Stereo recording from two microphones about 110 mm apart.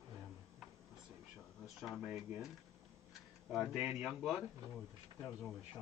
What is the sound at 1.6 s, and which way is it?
Speech, centre (ahead or behind).